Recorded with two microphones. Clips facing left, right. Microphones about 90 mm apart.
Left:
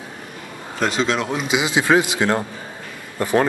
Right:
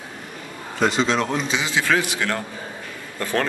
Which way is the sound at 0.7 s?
Centre (ahead or behind).